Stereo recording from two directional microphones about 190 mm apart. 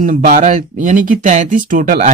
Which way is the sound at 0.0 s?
45° right (ahead or behind).